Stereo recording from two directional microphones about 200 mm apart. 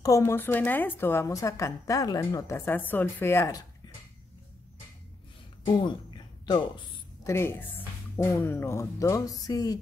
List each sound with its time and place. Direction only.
0.0 s a woman's voice: 15° left (ahead or behind)
5.8 s a sound: 20° left (ahead or behind)
7.2 s a woman's voice: 15° left (ahead or behind)